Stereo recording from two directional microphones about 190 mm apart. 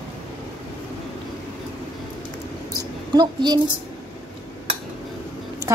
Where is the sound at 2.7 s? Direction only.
20° right (ahead or behind).